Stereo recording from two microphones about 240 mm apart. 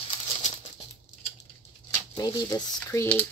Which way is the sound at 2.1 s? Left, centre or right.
Centre.